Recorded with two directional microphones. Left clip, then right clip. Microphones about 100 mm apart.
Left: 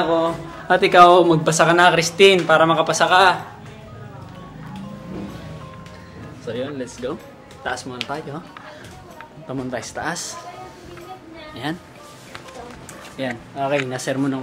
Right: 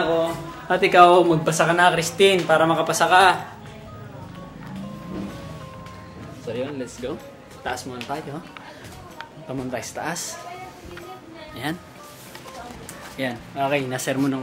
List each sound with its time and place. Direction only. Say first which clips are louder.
0.7 s speech: left 3 dB; 15° left (ahead or behind)
6.4 s speech: left 2 dB; 10° left (ahead or behind)
9.5 s speech: left 2 dB; 15° left (ahead or behind)
11.6 s speech: left 1 dB; centre (ahead or behind)
13.2 s speech: even; 10° left (ahead or behind)